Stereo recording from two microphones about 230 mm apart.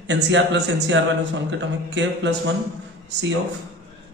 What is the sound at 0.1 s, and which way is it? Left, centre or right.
Speech, right.